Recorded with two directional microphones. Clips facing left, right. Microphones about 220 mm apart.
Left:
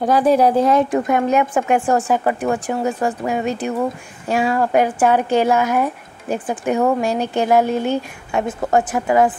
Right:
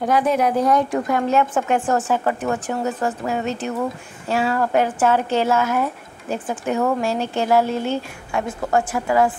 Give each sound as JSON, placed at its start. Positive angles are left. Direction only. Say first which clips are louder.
{"t": 0.0, "sound": "speech", "louder": "left 4 dB", "side_deg": 35}